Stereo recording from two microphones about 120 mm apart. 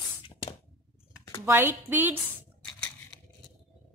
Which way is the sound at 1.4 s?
15° right (ahead or behind).